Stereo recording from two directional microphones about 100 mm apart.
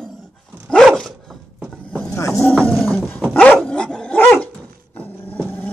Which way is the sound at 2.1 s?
30° left (ahead or behind).